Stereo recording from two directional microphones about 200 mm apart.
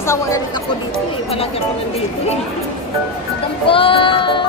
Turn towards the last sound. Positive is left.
turn(degrees=25)  # may be behind; listen again after turning